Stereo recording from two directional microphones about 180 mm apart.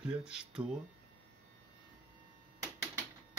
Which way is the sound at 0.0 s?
5° right (ahead or behind).